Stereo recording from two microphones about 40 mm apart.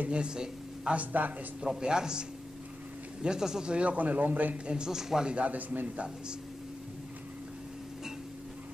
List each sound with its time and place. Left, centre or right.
0.1 s a woman's voice: right
0.9 s speech: right
1.8 s speech: centre
3.7 s speech: right
4.6 s speech: right
5.3 s speech: right